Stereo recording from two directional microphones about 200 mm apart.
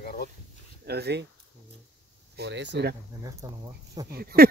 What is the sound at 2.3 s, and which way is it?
Speech, 60° right (ahead or behind).